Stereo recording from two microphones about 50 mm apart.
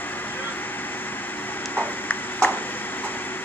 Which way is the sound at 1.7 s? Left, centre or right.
Left.